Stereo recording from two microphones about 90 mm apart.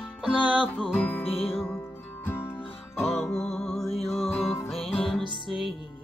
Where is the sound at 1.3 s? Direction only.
90° left.